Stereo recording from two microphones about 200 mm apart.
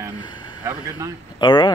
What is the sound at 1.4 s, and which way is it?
Speech, 25° left (ahead or behind).